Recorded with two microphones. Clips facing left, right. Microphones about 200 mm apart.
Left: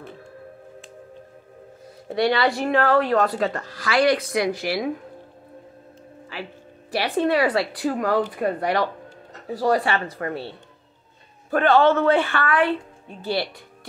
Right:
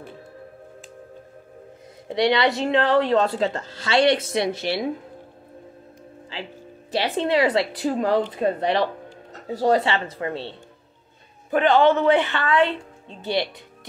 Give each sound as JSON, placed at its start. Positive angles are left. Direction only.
{"t": 2.0, "sound": "speech", "side_deg": -20}
{"t": 6.3, "sound": "speech", "side_deg": -25}
{"t": 11.5, "sound": "speech", "side_deg": -15}